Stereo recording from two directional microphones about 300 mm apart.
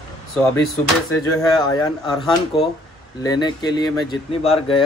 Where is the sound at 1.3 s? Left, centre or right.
Centre.